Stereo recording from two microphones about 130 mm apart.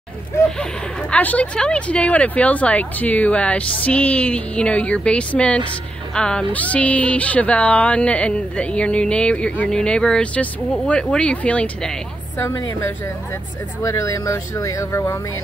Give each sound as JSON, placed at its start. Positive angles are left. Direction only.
{"t": 0.4, "sound": "speech", "side_deg": 20}
{"t": 1.1, "sound": "speech", "side_deg": 10}
{"t": 12.4, "sound": "speech", "side_deg": 20}